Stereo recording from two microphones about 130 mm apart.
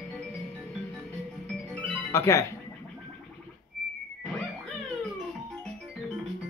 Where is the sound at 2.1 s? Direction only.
20° left (ahead or behind).